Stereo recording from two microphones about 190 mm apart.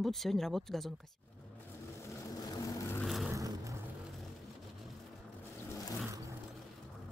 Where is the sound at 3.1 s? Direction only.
Centre (ahead or behind).